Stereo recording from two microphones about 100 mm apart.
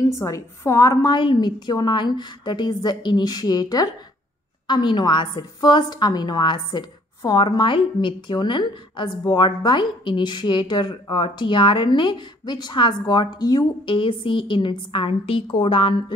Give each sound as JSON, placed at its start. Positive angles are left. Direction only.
{"t": 0.2, "sound": "a woman's voice", "side_deg": 30}
{"t": 1.1, "sound": "a woman's voice", "side_deg": 50}